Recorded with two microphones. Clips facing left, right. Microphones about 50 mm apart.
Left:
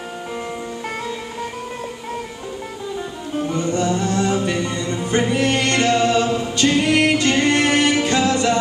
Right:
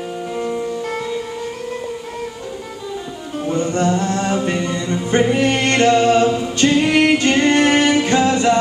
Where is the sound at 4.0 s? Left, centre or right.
Right.